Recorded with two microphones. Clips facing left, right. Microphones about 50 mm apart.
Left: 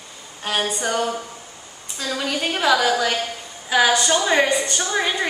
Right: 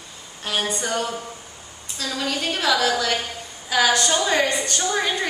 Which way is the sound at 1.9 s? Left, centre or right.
Centre.